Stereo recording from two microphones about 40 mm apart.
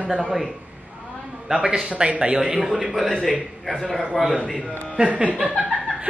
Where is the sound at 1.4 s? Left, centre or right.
Centre.